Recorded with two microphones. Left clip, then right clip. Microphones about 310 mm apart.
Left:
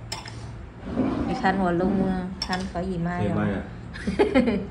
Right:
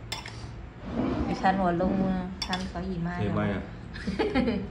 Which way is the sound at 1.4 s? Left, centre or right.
Centre.